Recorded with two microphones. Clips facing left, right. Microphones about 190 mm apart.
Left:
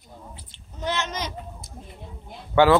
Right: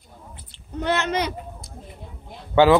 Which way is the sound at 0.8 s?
60° right (ahead or behind).